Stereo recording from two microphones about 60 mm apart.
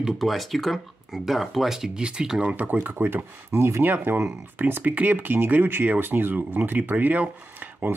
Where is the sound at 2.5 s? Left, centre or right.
Right.